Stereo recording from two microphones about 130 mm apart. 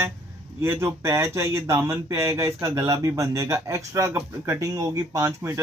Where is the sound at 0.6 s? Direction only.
20° right (ahead or behind).